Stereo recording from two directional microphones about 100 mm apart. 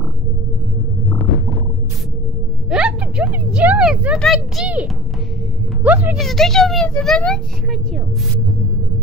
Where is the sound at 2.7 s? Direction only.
10° right (ahead or behind).